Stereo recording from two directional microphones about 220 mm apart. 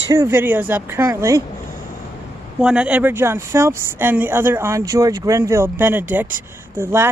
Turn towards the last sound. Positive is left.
turn(degrees=-10)  # may be behind; listen again after turning